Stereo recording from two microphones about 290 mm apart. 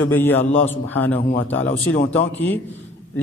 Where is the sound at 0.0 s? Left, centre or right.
Centre.